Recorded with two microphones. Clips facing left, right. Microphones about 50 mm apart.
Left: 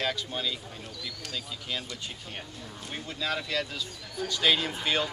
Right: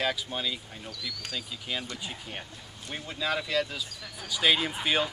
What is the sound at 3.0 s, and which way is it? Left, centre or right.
Speech, centre.